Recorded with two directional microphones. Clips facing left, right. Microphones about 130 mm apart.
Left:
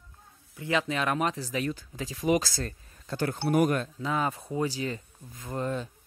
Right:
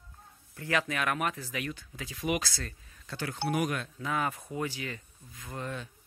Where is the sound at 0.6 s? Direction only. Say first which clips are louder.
Left 3 dB; 20° left (ahead or behind); by 3.9 s 45° left (ahead or behind).